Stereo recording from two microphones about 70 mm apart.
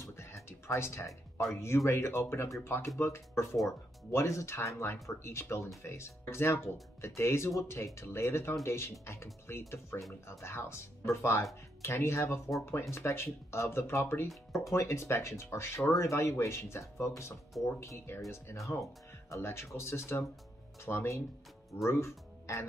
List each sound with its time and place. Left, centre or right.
0.0 s music: left
1.5 s speech: left
19.3 s speech: left